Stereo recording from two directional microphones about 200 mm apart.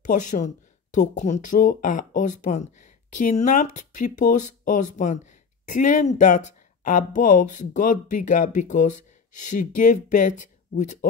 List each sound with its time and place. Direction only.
0.0 s speech: 40° left (ahead or behind)